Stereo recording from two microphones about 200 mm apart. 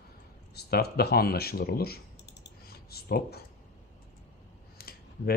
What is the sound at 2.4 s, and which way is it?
Clicking, 50° left (ahead or behind).